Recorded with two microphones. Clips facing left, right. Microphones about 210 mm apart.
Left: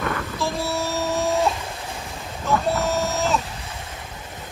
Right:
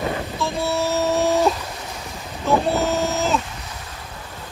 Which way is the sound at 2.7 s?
Centre (ahead or behind).